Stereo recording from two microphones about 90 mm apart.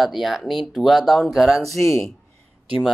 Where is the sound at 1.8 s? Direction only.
35° left (ahead or behind).